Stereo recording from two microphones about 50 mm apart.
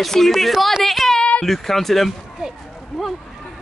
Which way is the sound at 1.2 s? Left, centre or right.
Centre.